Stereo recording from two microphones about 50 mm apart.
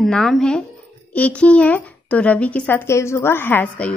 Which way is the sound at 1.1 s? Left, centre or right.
Left.